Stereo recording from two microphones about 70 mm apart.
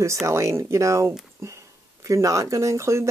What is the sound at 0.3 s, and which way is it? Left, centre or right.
Speech, right.